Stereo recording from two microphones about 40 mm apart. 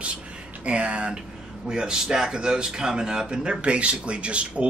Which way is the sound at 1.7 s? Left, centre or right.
Right.